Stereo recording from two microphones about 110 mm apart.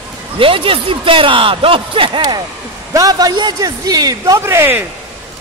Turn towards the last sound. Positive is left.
turn(degrees=-20)  # may be behind; listen again after turning